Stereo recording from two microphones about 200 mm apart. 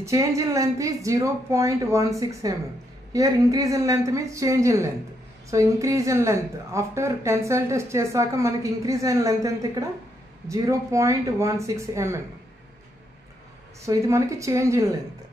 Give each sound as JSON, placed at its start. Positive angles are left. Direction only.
{"t": 0.0, "sound": "speech", "side_deg": -15}
{"t": 13.8, "sound": "speech", "side_deg": -15}